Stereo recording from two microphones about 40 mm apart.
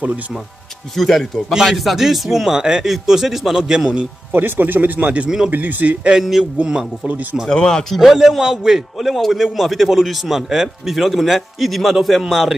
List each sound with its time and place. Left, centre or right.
0.9 s a man's voice: centre
4.3 s speech: right
6.1 s a man's voice: centre
7.5 s speech: centre
7.9 s a man's voice: centre